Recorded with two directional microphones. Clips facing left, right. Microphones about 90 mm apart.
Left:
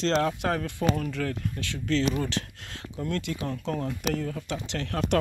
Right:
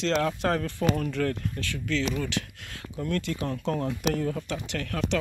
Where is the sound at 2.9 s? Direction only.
20° left (ahead or behind).